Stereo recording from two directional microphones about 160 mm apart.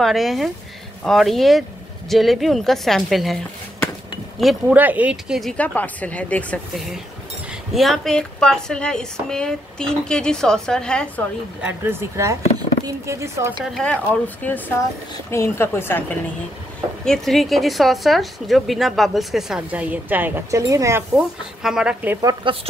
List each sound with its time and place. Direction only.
0.0 s speech: centre (ahead or behind)
4.4 s speech: centre (ahead or behind)
11.6 s speech: 15° right (ahead or behind)
13.6 s speech: 5° left (ahead or behind)
17.0 s speech: centre (ahead or behind); by 21.0 s 20° right (ahead or behind)
21.1 s speech: 5° right (ahead or behind)
22.2 s speech: 30° right (ahead or behind)